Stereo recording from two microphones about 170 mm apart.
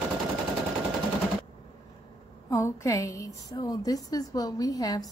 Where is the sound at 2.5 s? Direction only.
15° left (ahead or behind).